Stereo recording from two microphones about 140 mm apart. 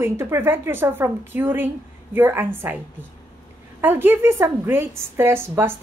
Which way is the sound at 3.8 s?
15° right (ahead or behind).